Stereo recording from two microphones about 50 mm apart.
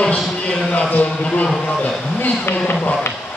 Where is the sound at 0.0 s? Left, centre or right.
Left.